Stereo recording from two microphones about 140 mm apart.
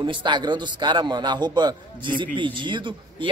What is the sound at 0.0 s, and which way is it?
Speech, 35° right (ahead or behind).